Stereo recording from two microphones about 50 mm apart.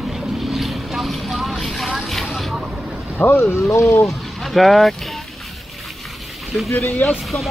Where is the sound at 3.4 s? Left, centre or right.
Left.